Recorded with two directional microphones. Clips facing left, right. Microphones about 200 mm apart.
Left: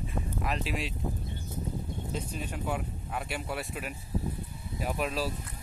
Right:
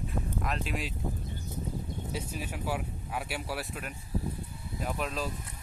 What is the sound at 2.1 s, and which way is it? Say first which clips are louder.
Speech: left 1 dB; 5° right (ahead or behind).